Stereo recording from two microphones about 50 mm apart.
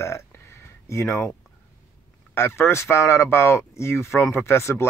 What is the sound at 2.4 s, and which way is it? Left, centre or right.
Speech, left.